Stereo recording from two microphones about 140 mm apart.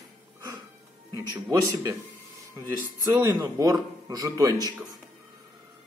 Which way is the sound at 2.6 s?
20° right (ahead or behind).